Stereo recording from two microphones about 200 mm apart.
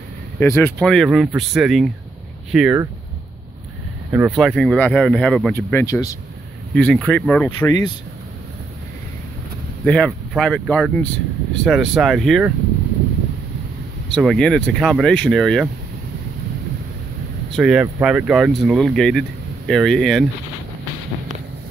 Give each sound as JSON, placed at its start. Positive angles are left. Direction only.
{"t": 0.4, "sound": "speech", "side_deg": 10}
{"t": 4.1, "sound": "speech", "side_deg": -5}
{"t": 6.7, "sound": "speech", "side_deg": 5}
{"t": 7.5, "sound": "speech", "side_deg": 20}
{"t": 9.8, "sound": "speech", "side_deg": 0}
{"t": 14.0, "sound": "speech", "side_deg": 0}
{"t": 17.5, "sound": "speech", "side_deg": 0}